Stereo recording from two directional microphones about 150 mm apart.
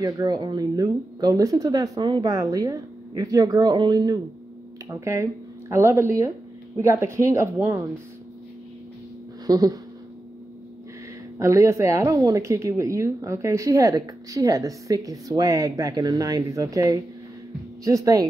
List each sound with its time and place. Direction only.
0.0 s speech: 25° right (ahead or behind)
9.5 s speech: 25° right (ahead or behind)
11.3 s speech: 20° right (ahead or behind)